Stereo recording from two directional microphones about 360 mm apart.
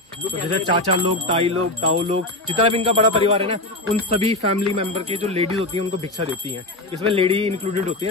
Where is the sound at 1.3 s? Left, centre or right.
Centre.